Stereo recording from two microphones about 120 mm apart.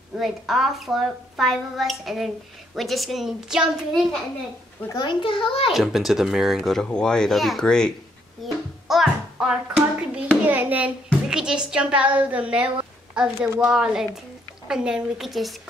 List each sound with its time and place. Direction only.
0.2 s a woman's voice: centre (ahead or behind)
4.9 s a child's voice: 40° left (ahead or behind)
5.7 s a woman's voice: centre (ahead or behind)